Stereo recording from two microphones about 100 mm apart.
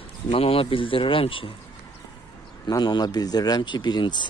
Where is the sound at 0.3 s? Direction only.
70° left (ahead or behind).